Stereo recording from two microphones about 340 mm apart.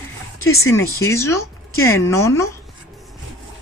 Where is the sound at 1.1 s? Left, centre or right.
Centre.